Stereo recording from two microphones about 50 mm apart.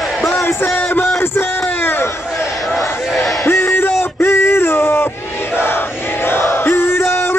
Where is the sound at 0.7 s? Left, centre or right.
Left.